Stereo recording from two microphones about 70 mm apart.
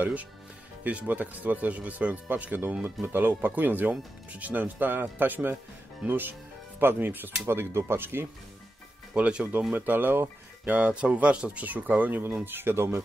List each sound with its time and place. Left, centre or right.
0.0 s speech: right
9.1 s speech: centre
9.8 s speech: right